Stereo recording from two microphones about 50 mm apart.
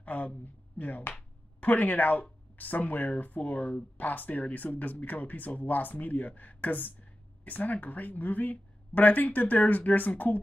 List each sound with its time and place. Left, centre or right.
0.0 s speech: left